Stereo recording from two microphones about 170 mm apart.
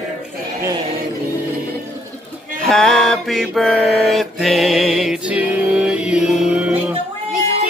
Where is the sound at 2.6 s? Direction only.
5° left (ahead or behind).